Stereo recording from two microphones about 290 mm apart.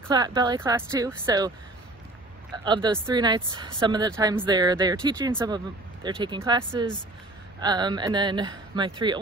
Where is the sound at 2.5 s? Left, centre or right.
Centre.